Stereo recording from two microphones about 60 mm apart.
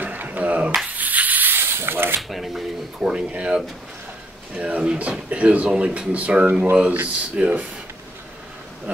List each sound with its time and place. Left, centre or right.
0.0 s a sound: right
0.9 s rub: right
2.2 s speech: centre
3.1 s speech: centre